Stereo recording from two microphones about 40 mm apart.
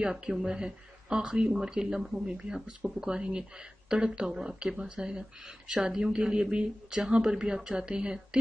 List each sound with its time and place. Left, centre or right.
0.0 s speech: centre